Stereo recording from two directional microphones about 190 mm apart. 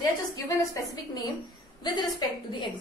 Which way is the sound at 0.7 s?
15° left (ahead or behind).